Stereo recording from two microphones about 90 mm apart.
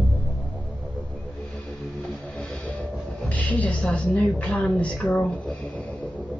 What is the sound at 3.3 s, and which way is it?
A woman's voice, 15° left (ahead or behind).